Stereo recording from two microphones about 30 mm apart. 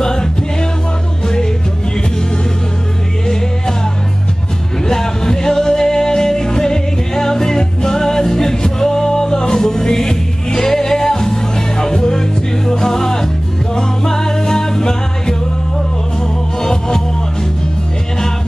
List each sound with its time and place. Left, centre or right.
0.0 s music: left
4.8 s music: left
16.5 s music: left